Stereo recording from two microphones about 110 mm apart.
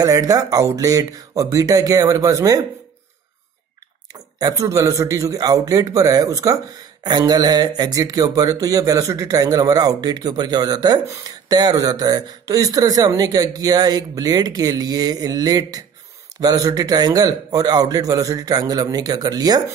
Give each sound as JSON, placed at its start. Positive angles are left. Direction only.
{"t": 0.0, "sound": "speech", "side_deg": -35}
{"t": 4.1, "sound": "speech", "side_deg": -35}